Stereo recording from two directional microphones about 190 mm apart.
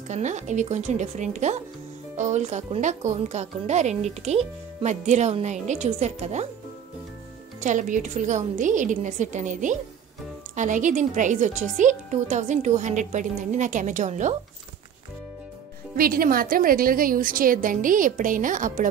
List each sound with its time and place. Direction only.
0.1 s speech: 40° right (ahead or behind)
7.6 s speech: 40° right (ahead or behind)
16.0 s a woman's voice: 50° right (ahead or behind)